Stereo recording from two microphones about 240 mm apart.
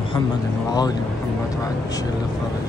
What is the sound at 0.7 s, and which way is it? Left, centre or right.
Speech, centre.